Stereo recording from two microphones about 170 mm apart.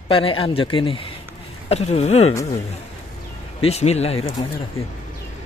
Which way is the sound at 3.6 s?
40° left (ahead or behind).